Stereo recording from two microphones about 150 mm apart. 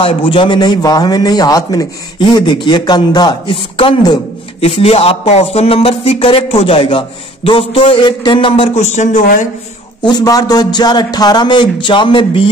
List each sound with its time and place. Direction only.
0.0 s speech: 35° left (ahead or behind)
4.6 s a sound: 40° left (ahead or behind)
8.7 s a man's voice: 50° left (ahead or behind)
10.0 s speech: 25° left (ahead or behind)